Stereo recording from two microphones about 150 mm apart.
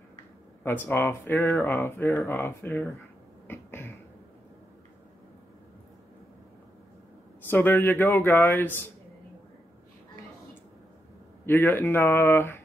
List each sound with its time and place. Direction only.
0.7 s speech: 15° left (ahead or behind)
3.4 s beatboxing: 15° left (ahead or behind)
7.4 s speech: 10° left (ahead or behind)
11.4 s speech: 15° left (ahead or behind)